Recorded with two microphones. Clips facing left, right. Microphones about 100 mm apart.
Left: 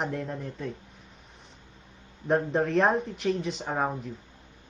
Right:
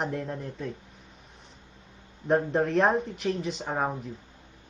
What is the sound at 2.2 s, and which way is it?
Speech, centre (ahead or behind).